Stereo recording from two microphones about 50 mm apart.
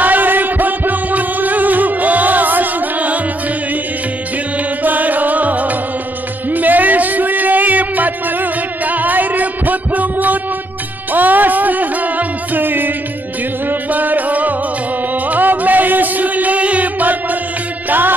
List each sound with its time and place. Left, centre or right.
0.0 s music: right
4.8 s music: right
6.5 s a sound: right
11.1 s music: right